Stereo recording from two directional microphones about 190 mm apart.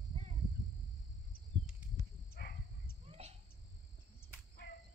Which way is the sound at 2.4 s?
55° left (ahead or behind).